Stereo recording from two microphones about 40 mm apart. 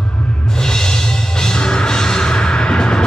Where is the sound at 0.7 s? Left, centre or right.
Centre.